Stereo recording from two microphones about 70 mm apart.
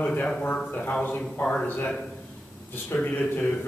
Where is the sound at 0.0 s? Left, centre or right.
Left.